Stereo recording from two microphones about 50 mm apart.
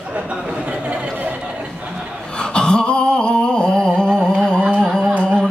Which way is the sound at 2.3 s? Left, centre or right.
Centre.